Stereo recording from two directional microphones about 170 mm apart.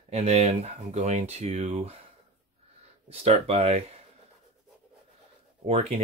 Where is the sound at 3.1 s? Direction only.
35° right (ahead or behind).